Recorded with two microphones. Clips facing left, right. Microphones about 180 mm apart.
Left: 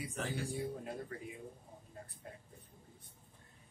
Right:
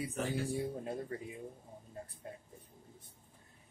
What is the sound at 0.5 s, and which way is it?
Speech, 25° right (ahead or behind).